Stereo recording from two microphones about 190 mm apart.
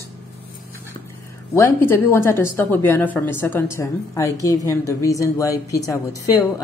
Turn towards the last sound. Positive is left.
turn(degrees=15)  # may be behind; listen again after turning